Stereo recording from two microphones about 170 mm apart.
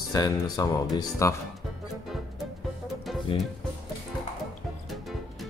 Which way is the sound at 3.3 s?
30° left (ahead or behind).